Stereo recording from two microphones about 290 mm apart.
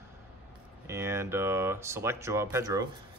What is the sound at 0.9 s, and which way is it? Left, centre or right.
Speech, centre.